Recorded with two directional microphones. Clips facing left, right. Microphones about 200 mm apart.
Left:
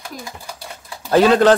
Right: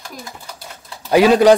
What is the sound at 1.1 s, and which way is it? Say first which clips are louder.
Speech: right 2 dB; 10° right (ahead or behind).